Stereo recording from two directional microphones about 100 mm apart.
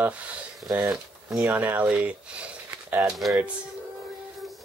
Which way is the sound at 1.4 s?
20° right (ahead or behind).